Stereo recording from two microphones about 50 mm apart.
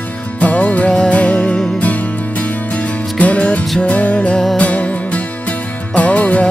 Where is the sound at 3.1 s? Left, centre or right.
Left.